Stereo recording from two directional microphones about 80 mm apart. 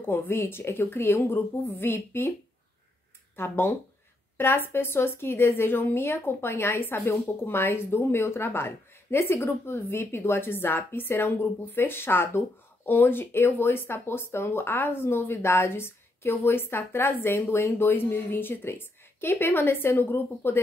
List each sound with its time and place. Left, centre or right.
0.0 s a woman's voice: left
3.3 s a woman's voice: left